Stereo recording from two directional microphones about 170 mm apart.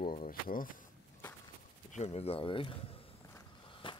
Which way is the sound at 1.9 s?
40° left (ahead or behind).